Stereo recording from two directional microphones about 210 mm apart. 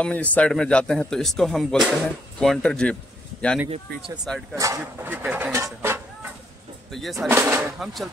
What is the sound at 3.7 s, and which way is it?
Speech, 25° right (ahead or behind).